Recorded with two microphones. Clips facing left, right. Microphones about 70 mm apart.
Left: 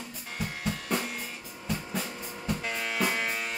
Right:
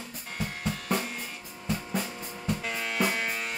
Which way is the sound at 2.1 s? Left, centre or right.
Centre.